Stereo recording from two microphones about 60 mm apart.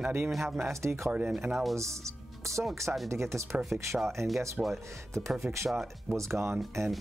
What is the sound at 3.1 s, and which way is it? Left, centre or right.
Speech, right.